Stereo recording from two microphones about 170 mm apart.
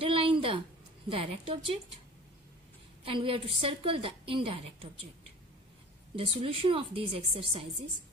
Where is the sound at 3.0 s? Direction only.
30° right (ahead or behind).